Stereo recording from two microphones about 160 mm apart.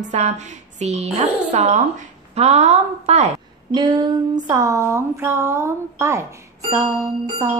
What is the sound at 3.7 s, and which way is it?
Speech, 30° right (ahead or behind).